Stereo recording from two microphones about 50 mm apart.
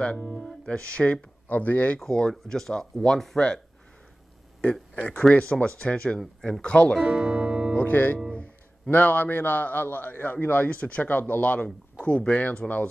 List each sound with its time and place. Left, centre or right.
0.7 s speech: left
1.5 s a man's voice: left
2.0 s speech: centre
5.3 s speech: left
7.0 s speech: centre
7.7 s a man's voice: left
11.1 s a man's voice: left
12.0 s speech: left